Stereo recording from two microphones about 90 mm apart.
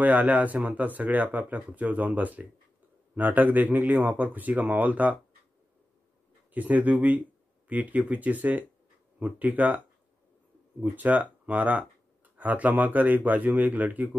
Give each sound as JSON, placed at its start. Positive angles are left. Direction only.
{"t": 0.0, "sound": "speech", "side_deg": -15}
{"t": 6.5, "sound": "speech", "side_deg": -20}
{"t": 10.8, "sound": "speech", "side_deg": -15}